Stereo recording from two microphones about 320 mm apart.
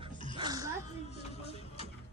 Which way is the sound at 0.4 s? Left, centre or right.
Centre.